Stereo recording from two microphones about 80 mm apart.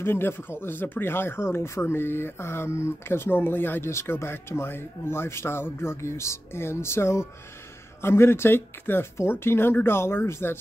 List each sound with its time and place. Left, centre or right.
0.0 s speech: left